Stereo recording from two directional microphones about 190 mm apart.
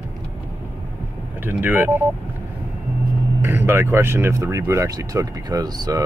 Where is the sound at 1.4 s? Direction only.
10° right (ahead or behind).